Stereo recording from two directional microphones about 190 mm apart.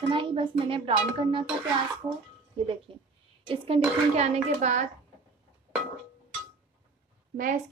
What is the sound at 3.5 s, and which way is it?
Speech, 30° right (ahead or behind).